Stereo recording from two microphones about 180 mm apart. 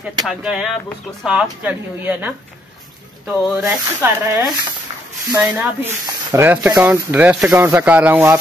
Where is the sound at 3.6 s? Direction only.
10° right (ahead or behind).